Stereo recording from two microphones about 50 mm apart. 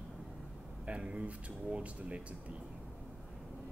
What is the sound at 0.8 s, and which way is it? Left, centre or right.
Speech, right.